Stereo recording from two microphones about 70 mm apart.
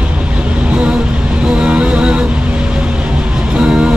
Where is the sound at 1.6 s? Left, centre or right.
Centre.